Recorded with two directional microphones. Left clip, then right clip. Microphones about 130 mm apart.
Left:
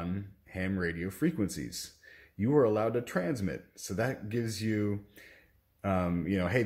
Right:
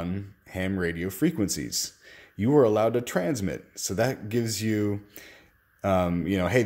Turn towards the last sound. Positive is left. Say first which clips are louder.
# right 6 dB
turn(degrees=-40)  # may be behind; listen again after turning